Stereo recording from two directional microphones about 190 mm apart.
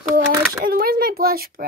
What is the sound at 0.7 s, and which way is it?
Speech, 50° right (ahead or behind).